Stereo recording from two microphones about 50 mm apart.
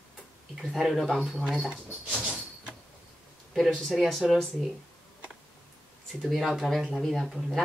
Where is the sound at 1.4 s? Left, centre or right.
Centre.